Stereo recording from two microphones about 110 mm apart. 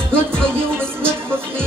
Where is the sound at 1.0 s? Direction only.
20° right (ahead or behind).